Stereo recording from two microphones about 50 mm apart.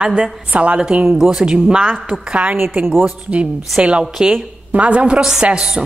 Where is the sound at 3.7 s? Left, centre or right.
Right.